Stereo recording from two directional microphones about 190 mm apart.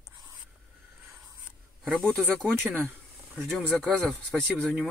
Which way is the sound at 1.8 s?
Centre (ahead or behind).